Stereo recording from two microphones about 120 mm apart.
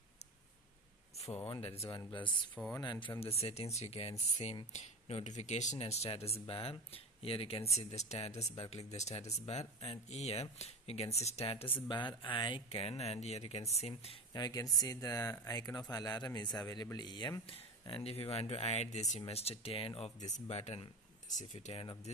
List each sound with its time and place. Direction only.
1.1 s a sound: 60° left (ahead or behind)
1.5 s speech: 55° left (ahead or behind)
1.8 s speech: 30° left (ahead or behind)
2.2 s speech: 10° left (ahead or behind)
2.8 s speech: 35° left (ahead or behind)
3.2 s speech: 55° left (ahead or behind)
4.7 s speech: 70° left (ahead or behind); by 7.6 s 50° left (ahead or behind)
7.7 s speech: 70° left (ahead or behind)
11.4 s speech: 50° left (ahead or behind)
11.9 s speech: 40° left (ahead or behind)
12.6 s speech: 55° left (ahead or behind)
14.3 s speech: 30° left (ahead or behind); by 20.1 s 50° left (ahead or behind)
20.2 s speech: 80° left; by 20.8 s 65° left (ahead or behind)
21.3 s speech: 80° left